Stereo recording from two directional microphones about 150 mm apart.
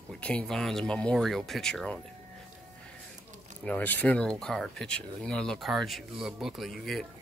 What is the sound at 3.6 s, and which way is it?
Speech, 10° left (ahead or behind).